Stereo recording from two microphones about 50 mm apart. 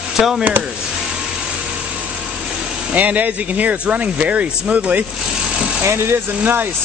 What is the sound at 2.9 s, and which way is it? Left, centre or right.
Speech, right.